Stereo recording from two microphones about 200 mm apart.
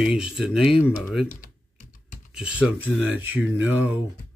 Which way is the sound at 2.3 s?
5° right (ahead or behind).